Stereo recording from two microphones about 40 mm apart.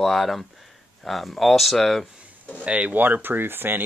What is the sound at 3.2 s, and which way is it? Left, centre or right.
Speech, right.